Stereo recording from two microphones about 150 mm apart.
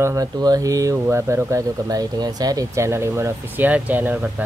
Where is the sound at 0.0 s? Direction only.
25° right (ahead or behind).